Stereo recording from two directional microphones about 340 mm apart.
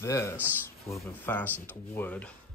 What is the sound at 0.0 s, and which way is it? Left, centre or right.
Speech, centre.